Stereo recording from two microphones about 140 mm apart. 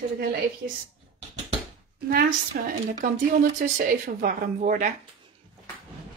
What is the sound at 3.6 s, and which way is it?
Speech, 70° right (ahead or behind).